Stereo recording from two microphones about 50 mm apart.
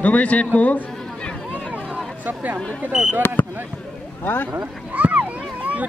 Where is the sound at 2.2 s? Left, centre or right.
Right.